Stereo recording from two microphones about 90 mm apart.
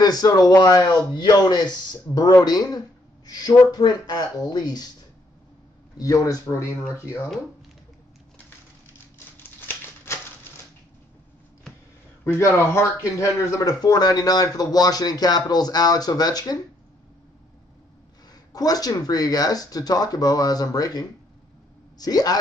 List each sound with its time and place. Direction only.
0.0 s speech: 45° left (ahead or behind)
5.9 s speech: 40° left (ahead or behind)
9.6 s a sound: 25° left (ahead or behind)
12.4 s speech: 35° left (ahead or behind)
18.3 s speech: 45° left (ahead or behind)